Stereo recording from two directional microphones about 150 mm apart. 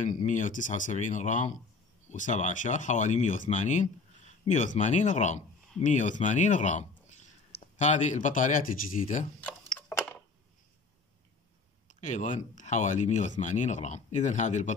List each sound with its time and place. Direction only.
0.0 s speech: 55° left (ahead or behind)
9.4 s a sound: 10° left (ahead or behind)
11.9 s speech: 55° left (ahead or behind)